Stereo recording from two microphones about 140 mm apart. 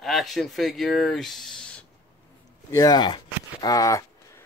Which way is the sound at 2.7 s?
25° left (ahead or behind).